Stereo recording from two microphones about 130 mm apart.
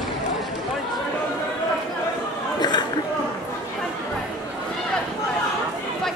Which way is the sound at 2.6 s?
35° left (ahead or behind).